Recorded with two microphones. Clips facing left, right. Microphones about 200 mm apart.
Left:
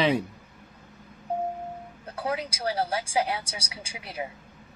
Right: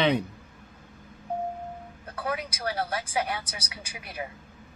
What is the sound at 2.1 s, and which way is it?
Speech, 30° left (ahead or behind).